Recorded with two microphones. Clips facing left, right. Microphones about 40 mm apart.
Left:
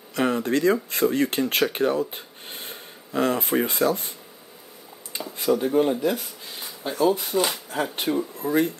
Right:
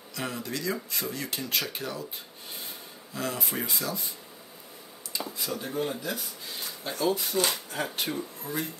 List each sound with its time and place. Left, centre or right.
0.1 s speech: left
5.1 s a sound: left
5.5 s speech: centre
6.4 s a sound: centre
7.2 s speech: centre
8.4 s speech: left